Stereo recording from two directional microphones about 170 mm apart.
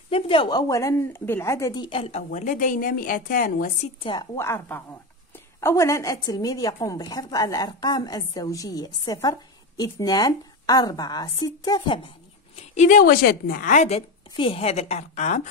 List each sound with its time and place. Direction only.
0.1 s a woman's voice: 30° left (ahead or behind); by 3.7 s 55° left (ahead or behind)
4.0 s a woman's voice: 30° left (ahead or behind)
4.4 s a woman's voice: 15° left (ahead or behind)
12.7 s a woman's voice: 50° left (ahead or behind)